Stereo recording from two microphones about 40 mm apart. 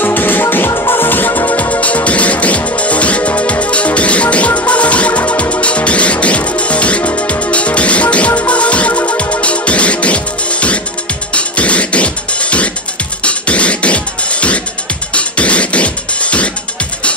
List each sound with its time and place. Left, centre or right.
0.0 s music: left
1.6 s music: left